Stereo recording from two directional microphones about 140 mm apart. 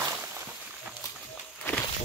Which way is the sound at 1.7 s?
15° left (ahead or behind).